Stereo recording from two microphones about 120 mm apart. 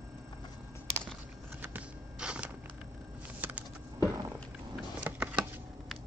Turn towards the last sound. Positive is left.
turn(degrees=-10)  # may be behind; listen again after turning